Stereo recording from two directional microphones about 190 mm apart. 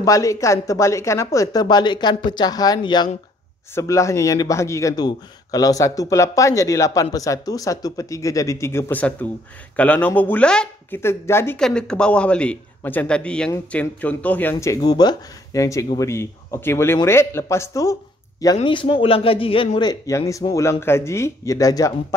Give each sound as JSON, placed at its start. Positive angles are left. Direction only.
{"t": 0.0, "sound": "a man's voice", "side_deg": 15}